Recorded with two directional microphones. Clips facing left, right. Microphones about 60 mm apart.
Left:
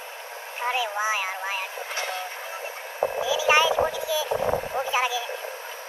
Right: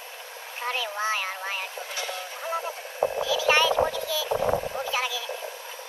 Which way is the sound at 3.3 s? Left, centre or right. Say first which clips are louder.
Left 3 dB; centre.